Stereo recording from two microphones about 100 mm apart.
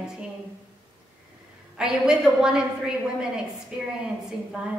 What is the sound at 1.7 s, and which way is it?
A woman's voice, 5° right (ahead or behind).